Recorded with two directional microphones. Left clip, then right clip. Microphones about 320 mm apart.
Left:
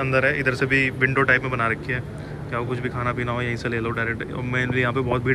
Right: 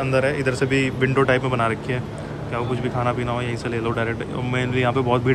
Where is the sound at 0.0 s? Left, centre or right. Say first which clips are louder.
Even; centre.